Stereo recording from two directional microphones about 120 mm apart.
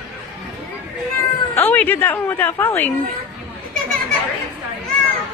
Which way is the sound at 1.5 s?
15° left (ahead or behind).